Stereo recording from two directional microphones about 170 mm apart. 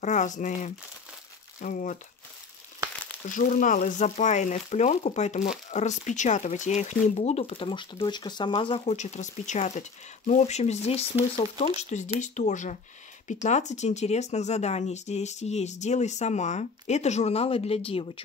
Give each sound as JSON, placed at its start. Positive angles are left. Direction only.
{"t": 0.0, "sound": "speech", "side_deg": 45}
{"t": 3.3, "sound": "speech", "side_deg": 50}